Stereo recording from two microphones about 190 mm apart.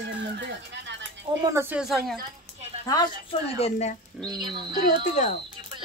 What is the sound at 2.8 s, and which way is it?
A woman's voice, 20° left (ahead or behind).